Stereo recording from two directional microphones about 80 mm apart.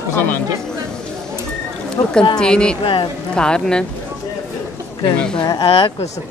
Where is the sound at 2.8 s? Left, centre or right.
Left.